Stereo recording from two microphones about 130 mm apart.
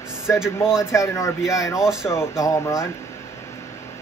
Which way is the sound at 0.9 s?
25° left (ahead or behind).